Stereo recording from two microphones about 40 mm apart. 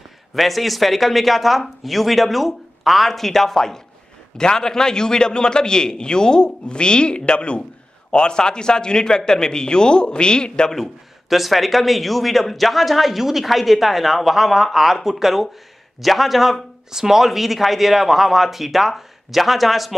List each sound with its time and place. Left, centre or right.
0.3 s a man's voice: centre; by 10.7 s left
11.2 s speech: centre